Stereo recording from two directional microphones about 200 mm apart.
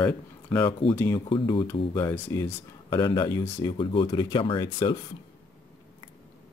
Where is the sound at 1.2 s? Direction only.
25° left (ahead or behind).